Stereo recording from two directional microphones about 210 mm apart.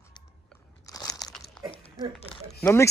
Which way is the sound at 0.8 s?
15° left (ahead or behind).